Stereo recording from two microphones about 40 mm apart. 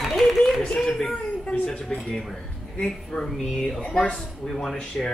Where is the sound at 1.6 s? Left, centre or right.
Left.